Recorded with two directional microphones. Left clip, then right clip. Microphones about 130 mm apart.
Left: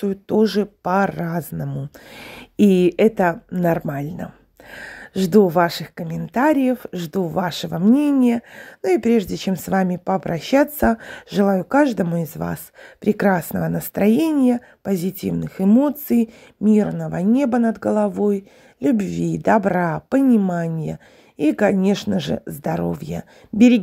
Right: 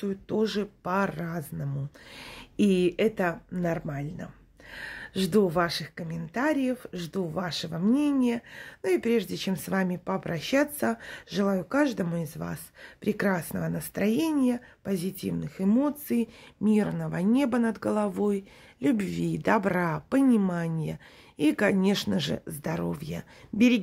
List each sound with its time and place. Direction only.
0.0 s speech: 45° left (ahead or behind)
16.6 s speech: 25° left (ahead or behind)